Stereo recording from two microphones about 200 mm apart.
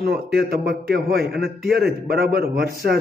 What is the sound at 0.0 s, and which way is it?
A man's voice, 55° right (ahead or behind).